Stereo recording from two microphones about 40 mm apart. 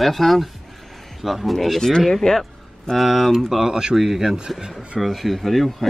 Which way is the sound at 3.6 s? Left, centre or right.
Centre.